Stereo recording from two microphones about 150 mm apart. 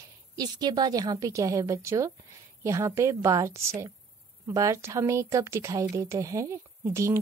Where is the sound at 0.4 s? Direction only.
25° right (ahead or behind).